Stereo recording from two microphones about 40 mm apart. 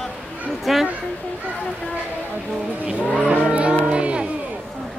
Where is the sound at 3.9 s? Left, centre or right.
Right.